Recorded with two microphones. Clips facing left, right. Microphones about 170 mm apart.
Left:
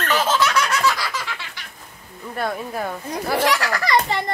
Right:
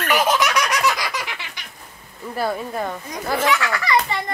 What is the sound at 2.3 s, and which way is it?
Speech, centre (ahead or behind).